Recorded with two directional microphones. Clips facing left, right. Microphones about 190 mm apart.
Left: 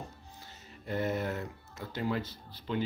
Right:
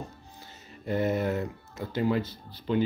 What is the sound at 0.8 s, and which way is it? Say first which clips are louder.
Speech: right 6 dB; 15° right (ahead or behind).